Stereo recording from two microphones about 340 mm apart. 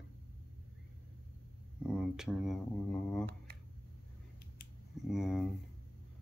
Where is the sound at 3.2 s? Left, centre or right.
Right.